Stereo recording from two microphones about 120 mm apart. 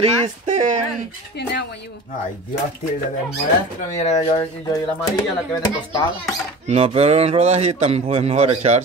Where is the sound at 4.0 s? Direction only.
75° left (ahead or behind).